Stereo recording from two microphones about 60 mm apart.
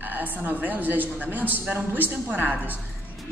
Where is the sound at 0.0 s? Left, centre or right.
Right.